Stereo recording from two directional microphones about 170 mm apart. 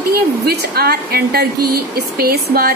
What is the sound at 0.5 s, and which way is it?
A woman's voice, 65° right (ahead or behind).